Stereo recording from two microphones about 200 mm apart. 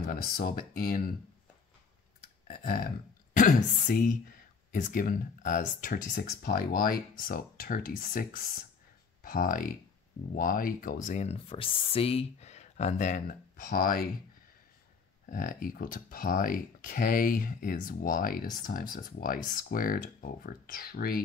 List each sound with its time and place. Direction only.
0.0 s speech: 45° left (ahead or behind)
2.4 s a sound: 45° left (ahead or behind)
3.8 s speech: 45° left (ahead or behind)
15.2 s speech: 40° left (ahead or behind)